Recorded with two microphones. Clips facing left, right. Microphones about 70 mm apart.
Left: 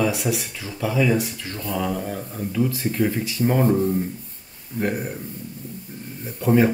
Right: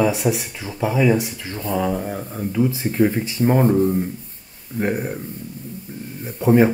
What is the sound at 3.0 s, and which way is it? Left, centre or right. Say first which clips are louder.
Speech: right 4 dB; right.